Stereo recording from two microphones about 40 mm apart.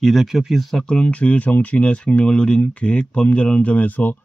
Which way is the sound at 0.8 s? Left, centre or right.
Left.